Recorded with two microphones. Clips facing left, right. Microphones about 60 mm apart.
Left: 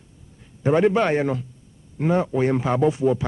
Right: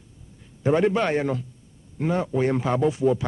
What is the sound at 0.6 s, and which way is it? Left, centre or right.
A man's voice, centre.